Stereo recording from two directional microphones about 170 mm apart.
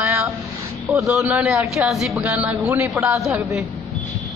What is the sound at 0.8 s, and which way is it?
Vehicle, 15° right (ahead or behind).